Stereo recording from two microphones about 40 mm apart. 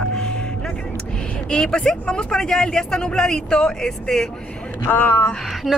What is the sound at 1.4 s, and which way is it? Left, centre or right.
Speech, left.